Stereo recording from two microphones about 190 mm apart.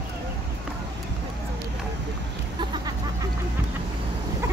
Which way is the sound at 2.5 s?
25° right (ahead or behind).